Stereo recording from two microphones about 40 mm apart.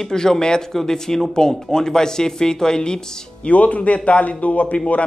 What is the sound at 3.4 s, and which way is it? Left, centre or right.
Speech, left.